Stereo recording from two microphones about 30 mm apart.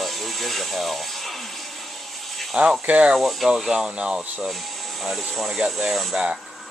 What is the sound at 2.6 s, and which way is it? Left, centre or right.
Speech, right.